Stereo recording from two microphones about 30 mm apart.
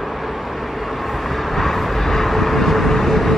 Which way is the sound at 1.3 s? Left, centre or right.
Centre.